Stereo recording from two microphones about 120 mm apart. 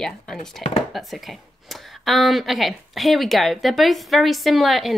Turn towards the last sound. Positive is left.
turn(degrees=0)  # may be behind; listen again after turning